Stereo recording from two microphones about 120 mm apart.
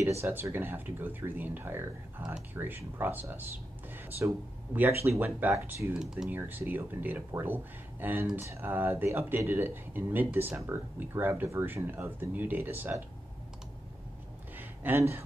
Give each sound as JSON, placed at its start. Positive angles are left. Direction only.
{"t": 0.2, "sound": "speech", "side_deg": -20}
{"t": 5.9, "sound": "speech", "side_deg": -5}
{"t": 6.3, "sound": "speech", "side_deg": -15}
{"t": 14.6, "sound": "a sound", "side_deg": -15}